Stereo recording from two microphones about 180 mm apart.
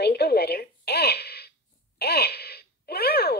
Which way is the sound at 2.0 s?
60° left (ahead or behind).